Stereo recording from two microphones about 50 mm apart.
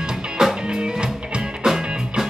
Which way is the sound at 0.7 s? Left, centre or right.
Centre.